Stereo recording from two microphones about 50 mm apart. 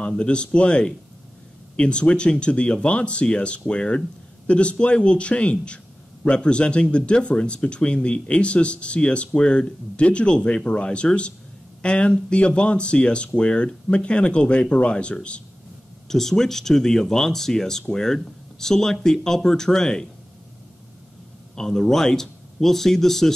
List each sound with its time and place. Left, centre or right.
0.0 s speech: centre
16.1 s speech: centre
21.5 s speech: centre